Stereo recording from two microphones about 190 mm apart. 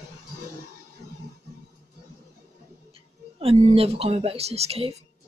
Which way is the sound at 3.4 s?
30° right (ahead or behind).